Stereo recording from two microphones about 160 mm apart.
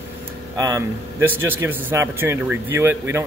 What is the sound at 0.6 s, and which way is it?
A man's voice, 20° right (ahead or behind).